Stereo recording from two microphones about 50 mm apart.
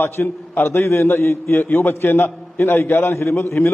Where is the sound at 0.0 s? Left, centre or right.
Left.